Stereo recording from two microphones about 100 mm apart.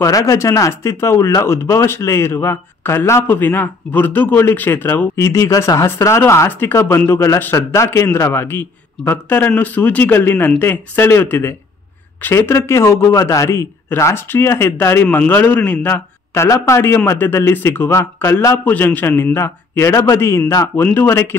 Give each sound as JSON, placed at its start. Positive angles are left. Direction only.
{"t": 0.0, "sound": "a man's voice", "side_deg": 35}
{"t": 16.4, "sound": "speech", "side_deg": 30}